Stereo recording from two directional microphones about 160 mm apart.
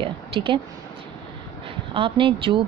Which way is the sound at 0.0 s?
35° right (ahead or behind).